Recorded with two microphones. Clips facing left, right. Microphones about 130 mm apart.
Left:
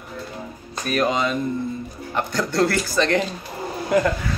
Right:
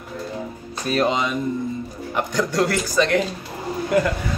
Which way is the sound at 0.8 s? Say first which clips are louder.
Even; 25° right (ahead or behind).